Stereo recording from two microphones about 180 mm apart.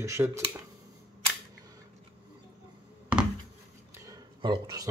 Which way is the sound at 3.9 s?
20° right (ahead or behind).